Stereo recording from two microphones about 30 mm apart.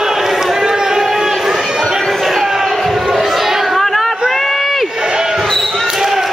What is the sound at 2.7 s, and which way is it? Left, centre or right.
Basketball bounce, centre.